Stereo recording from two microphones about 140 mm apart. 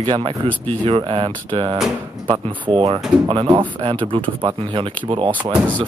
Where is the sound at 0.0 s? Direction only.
35° right (ahead or behind).